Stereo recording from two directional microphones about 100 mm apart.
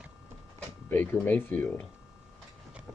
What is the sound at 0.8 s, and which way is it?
Speech, 20° left (ahead or behind).